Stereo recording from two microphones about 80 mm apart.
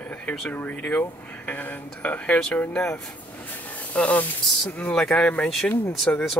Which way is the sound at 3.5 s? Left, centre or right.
Centre.